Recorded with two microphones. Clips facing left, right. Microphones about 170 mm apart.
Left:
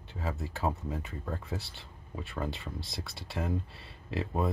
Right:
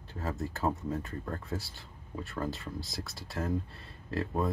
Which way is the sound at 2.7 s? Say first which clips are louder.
Right 1 dB; 25° left (ahead or behind).